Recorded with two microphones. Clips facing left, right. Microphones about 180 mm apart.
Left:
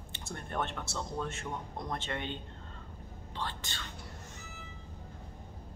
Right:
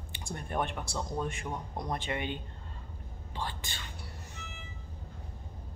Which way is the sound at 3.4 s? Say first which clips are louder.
Right 1 dB; 15° right (ahead or behind).